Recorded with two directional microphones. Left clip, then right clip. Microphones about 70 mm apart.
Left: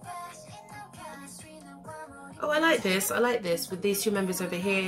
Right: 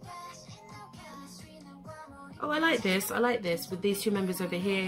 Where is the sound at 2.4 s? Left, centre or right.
Right.